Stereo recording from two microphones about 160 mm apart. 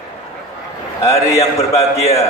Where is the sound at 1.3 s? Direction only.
20° left (ahead or behind).